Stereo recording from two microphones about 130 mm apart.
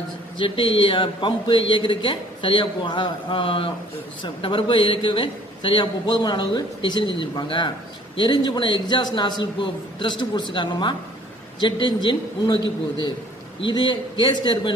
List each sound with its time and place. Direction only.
0.4 s a man's voice: 40° left (ahead or behind)